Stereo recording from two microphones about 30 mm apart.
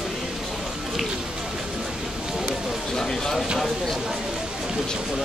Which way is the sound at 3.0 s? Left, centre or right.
Centre.